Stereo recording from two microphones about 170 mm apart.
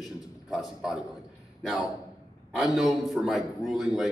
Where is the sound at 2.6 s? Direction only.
Centre (ahead or behind).